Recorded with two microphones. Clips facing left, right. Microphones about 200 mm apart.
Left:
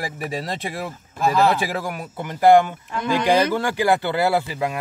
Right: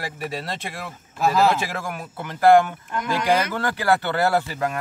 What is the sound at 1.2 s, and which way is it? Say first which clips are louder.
Speech: left 1 dB; centre (ahead or behind).